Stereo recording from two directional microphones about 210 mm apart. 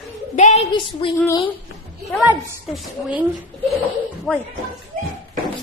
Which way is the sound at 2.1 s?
5° right (ahead or behind).